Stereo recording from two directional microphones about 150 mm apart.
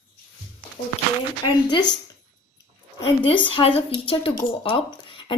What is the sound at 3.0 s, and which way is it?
A woman's voice, 35° left (ahead or behind).